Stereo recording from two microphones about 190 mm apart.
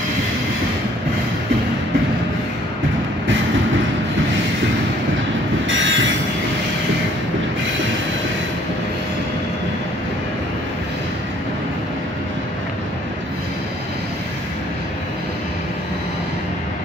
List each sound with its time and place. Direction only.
5.7 s train: 80° right